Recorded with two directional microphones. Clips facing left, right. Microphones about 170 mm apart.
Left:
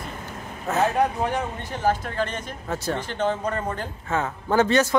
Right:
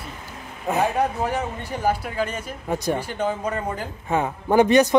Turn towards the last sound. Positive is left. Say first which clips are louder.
# right 4 dB
turn(degrees=-15)  # may be behind; listen again after turning